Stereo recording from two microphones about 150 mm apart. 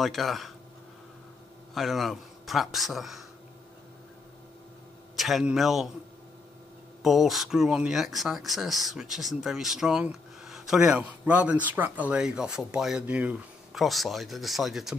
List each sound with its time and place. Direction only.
0.0 s speech: centre (ahead or behind)
1.7 s speech: centre (ahead or behind)
5.1 s a man's voice: centre (ahead or behind)
7.0 s speech: centre (ahead or behind)